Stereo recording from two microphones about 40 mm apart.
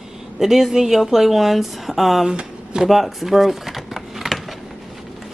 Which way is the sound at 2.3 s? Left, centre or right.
Right.